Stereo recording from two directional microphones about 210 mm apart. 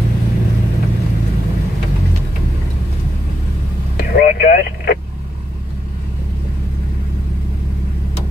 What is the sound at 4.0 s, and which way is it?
Vehicle, 45° left (ahead or behind).